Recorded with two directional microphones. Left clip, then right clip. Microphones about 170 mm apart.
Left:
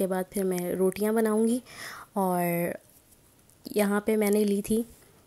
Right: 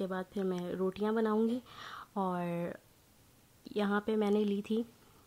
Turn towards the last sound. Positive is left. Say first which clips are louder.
# left 7 dB
turn(degrees=20)  # may be behind; listen again after turning